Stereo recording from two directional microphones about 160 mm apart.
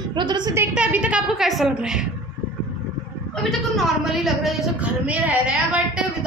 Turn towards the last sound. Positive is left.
turn(degrees=-10)  # may be behind; listen again after turning